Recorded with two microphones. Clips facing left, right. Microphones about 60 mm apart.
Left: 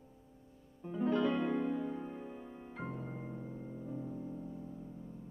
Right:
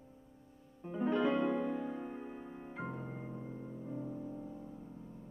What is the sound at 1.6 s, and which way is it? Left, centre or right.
Music, centre.